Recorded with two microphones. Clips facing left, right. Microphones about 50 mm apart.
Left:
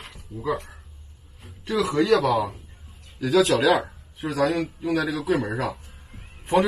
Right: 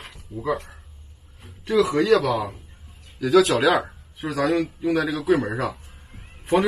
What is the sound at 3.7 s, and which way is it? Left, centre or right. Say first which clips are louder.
Speech: right 1 dB; centre.